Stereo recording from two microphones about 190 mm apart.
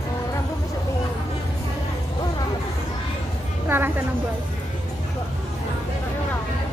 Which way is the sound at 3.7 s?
10° right (ahead or behind).